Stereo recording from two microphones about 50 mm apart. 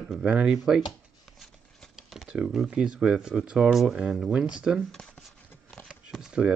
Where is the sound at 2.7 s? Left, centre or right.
Centre.